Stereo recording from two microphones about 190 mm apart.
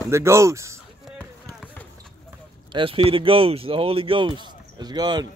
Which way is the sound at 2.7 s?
30° right (ahead or behind).